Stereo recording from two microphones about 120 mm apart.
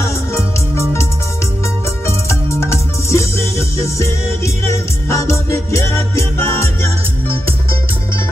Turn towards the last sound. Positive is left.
turn(degrees=25)  # may be behind; listen again after turning